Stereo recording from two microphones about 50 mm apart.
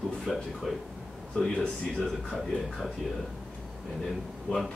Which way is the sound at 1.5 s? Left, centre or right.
Left.